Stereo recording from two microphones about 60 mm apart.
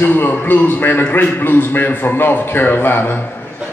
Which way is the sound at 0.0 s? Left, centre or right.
Left.